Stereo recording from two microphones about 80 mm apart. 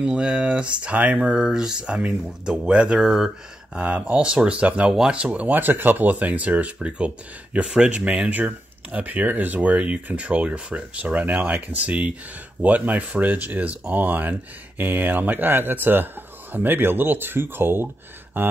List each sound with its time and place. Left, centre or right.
0.0 s speech: centre; by 18.5 s right